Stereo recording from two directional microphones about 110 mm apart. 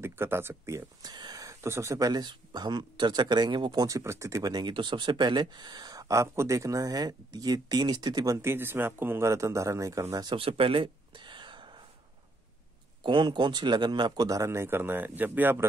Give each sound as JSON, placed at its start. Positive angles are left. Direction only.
{"t": 0.0, "sound": "speech", "side_deg": -20}
{"t": 1.0, "sound": "speech", "side_deg": -40}
{"t": 8.4, "sound": "speech", "side_deg": -20}
{"t": 10.3, "sound": "a sound", "side_deg": -55}
{"t": 13.0, "sound": "speech", "side_deg": -45}